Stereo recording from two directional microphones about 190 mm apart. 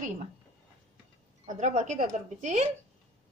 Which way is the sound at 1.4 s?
40° right (ahead or behind).